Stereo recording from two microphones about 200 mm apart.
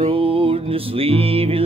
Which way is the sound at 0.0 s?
25° right (ahead or behind).